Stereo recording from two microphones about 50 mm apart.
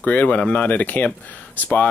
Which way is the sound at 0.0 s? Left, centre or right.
Left.